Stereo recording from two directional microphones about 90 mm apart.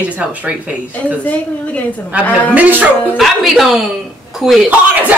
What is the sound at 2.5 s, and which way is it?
Speech, 20° right (ahead or behind).